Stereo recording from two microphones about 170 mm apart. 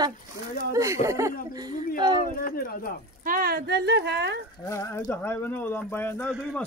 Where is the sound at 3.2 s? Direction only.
60° right (ahead or behind); by 4.3 s 90° right.